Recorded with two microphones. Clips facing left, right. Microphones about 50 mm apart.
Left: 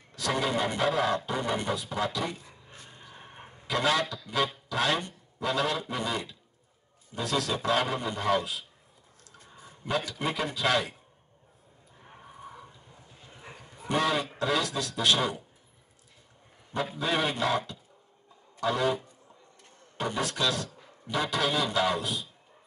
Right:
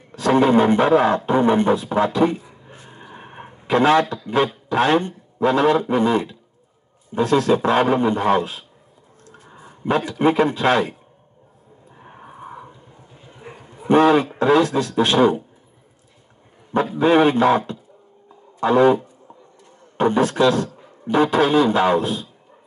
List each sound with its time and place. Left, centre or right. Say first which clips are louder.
0.1 s a man's voice: right 13 dB; right
2.6 s a sound: right 8 dB; right
4.6 s a man's voice: right 11 dB; right
11.9 s a sound: right 8 dB; right
13.2 s a man's voice: right 8 dB; right
16.9 s a man's voice: right 15 dB; right